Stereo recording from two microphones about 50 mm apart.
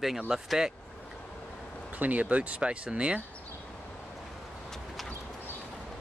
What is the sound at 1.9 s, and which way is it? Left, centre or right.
Speech, right.